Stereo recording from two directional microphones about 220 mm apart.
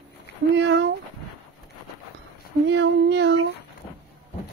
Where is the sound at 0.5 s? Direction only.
50° right (ahead or behind).